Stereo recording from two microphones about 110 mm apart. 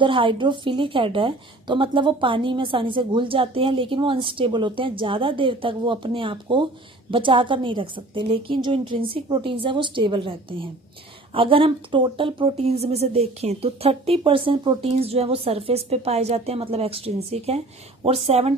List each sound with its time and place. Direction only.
0.0 s a woman's voice: 50° right (ahead or behind)
14.8 s a woman's voice: 65° right (ahead or behind)